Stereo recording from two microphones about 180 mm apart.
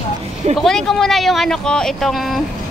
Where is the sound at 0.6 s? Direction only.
Centre (ahead or behind).